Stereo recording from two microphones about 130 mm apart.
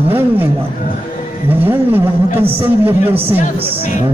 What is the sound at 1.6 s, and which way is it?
A man's voice, 15° right (ahead or behind).